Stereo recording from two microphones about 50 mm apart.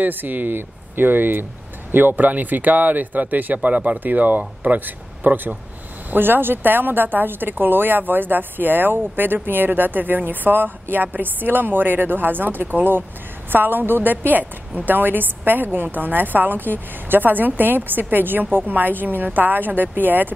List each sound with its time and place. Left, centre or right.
0.0 s a woman's voice: right